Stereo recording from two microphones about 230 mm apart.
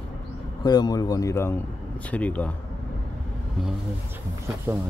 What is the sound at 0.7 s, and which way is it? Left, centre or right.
Speech, centre.